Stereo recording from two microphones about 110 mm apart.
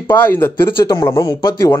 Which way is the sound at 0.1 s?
20° left (ahead or behind).